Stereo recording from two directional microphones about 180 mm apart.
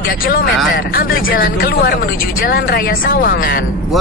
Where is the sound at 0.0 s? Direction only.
55° left (ahead or behind).